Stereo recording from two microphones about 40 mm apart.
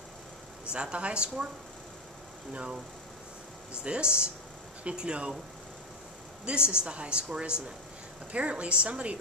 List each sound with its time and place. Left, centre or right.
0.7 s speech: right
3.8 s speech: right
6.4 s a woman's voice: right